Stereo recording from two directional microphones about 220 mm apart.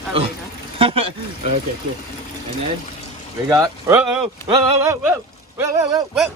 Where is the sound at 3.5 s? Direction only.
15° right (ahead or behind).